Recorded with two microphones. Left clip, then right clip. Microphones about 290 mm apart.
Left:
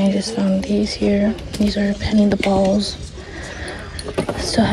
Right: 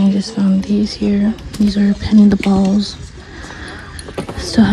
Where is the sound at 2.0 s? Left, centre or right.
Centre.